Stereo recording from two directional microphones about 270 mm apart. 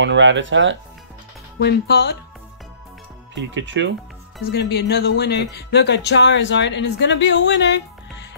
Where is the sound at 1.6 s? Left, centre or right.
Left.